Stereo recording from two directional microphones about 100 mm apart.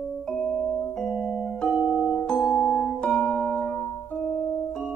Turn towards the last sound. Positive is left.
turn(degrees=5)  # may be behind; listen again after turning